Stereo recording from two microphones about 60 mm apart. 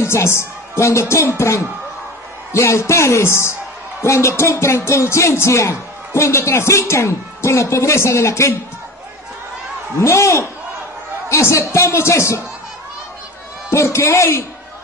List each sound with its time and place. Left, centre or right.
0.0 s music: left
9.9 s music: left
13.7 s a man's voice: left